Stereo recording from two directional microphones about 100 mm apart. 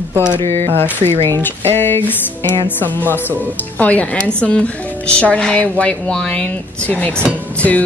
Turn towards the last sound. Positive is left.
turn(degrees=15)  # may be behind; listen again after turning